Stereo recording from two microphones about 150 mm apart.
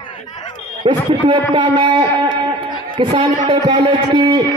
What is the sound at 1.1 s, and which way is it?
Speech, 30° right (ahead or behind).